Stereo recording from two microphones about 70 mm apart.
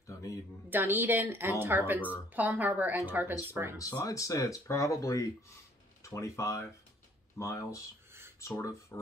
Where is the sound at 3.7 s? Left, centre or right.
Left.